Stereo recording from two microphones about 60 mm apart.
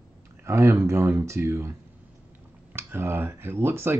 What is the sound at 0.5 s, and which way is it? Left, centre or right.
Speech, right.